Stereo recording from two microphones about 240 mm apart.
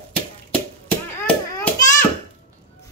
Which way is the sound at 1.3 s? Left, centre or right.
Centre.